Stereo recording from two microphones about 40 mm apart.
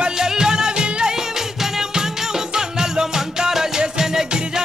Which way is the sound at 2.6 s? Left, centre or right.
Centre.